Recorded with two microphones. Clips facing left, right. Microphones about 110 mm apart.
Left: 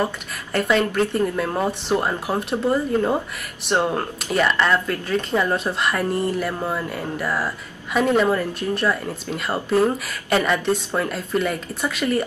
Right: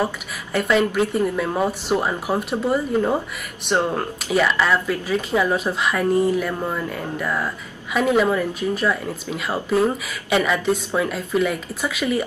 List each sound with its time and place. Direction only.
0.0 s speech: centre (ahead or behind)